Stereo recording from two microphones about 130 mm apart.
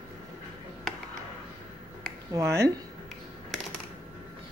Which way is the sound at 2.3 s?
25° right (ahead or behind).